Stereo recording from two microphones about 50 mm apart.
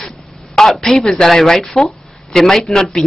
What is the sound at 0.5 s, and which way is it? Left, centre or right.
A woman's voice, centre.